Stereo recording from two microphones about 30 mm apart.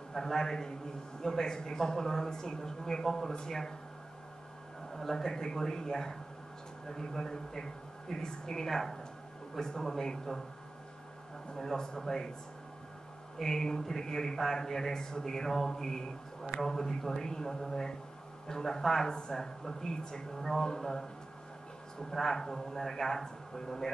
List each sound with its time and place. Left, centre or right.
0.1 s a man's voice: centre
4.9 s a man's voice: centre
11.5 s a man's voice: centre
13.4 s a man's voice: centre
22.1 s speech: centre